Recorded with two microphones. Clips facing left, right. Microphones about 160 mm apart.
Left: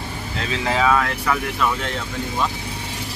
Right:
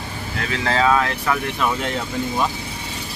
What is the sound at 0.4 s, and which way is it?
Speech, 20° left (ahead or behind).